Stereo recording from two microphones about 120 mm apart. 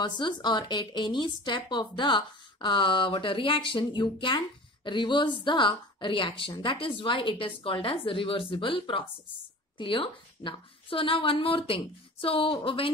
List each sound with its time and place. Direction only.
0.0 s a woman's voice: 40° left (ahead or behind)